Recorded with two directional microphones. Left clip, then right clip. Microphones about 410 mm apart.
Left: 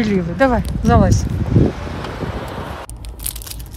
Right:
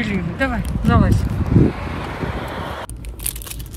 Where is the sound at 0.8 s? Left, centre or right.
Centre.